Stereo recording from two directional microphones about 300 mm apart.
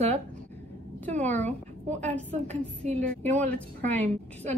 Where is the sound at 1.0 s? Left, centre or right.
Centre.